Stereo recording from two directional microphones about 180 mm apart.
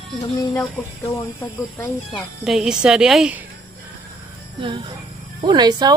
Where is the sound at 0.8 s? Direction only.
10° left (ahead or behind).